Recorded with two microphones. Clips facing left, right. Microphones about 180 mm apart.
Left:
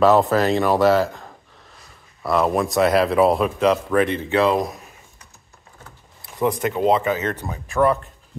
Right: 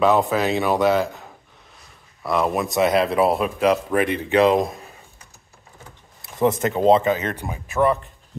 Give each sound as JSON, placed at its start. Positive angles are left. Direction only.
{"t": 0.0, "sound": "speech", "side_deg": 0}
{"t": 3.6, "sound": "speech", "side_deg": -15}
{"t": 6.4, "sound": "speech", "side_deg": -25}
{"t": 7.2, "sound": "speech", "side_deg": -15}